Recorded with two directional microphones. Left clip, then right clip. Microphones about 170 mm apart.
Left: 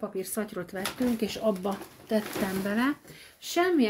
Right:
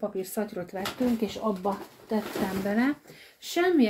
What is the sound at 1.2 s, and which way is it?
Speech, 50° left (ahead or behind).